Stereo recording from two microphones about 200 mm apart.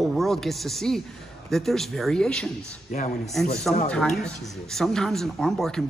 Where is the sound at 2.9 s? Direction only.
40° left (ahead or behind).